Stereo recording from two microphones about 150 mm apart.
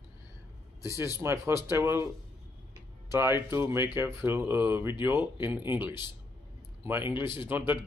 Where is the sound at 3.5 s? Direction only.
15° right (ahead or behind).